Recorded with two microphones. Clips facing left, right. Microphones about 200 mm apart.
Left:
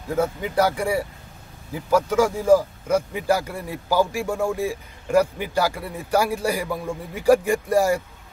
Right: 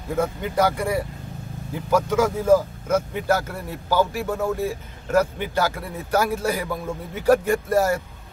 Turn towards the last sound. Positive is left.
turn(degrees=10)  # may be behind; listen again after turning